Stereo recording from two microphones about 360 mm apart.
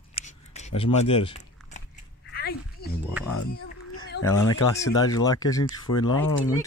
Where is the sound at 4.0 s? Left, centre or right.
Left.